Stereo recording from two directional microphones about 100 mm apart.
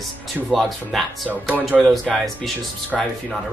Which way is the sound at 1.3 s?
15° right (ahead or behind).